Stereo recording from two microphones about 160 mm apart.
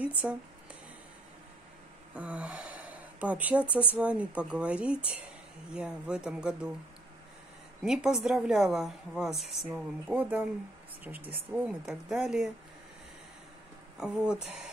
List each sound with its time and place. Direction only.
0.0 s speech: 10° right (ahead or behind)
2.1 s a woman's voice: 10° right (ahead or behind)
7.8 s a woman's voice: 5° right (ahead or behind)
13.9 s a woman's voice: 5° right (ahead or behind)